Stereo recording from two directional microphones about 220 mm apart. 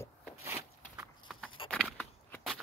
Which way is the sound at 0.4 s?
10° right (ahead or behind).